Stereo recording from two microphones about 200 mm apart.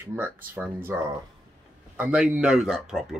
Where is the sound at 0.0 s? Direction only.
10° right (ahead or behind).